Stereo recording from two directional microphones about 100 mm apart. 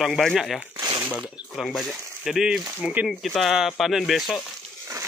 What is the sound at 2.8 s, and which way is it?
Speech, 15° right (ahead or behind).